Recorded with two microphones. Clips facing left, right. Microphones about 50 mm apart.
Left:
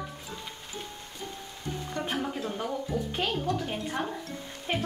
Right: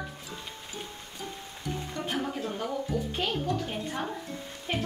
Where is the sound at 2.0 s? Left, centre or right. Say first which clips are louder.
Even; centre.